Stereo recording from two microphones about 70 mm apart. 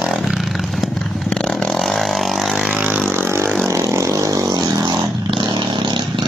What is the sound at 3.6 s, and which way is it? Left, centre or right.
Vehicle, right.